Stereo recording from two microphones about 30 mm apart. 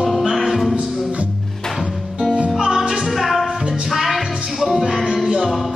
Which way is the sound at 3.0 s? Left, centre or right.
Centre.